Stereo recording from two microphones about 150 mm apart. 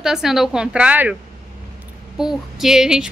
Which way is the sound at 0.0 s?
5° right (ahead or behind).